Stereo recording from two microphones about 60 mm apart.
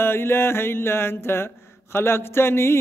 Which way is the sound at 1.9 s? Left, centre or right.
Left.